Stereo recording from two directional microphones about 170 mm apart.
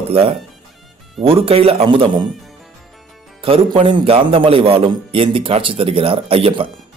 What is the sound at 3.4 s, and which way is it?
A man's voice, 30° right (ahead or behind).